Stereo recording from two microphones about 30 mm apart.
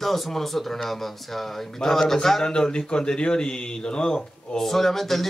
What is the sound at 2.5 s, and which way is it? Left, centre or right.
A man's voice, left.